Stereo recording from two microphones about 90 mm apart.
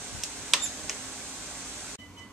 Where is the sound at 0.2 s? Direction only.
Centre (ahead or behind).